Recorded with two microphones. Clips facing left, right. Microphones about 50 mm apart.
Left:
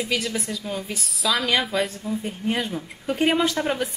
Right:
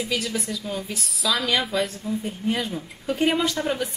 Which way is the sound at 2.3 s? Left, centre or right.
Centre.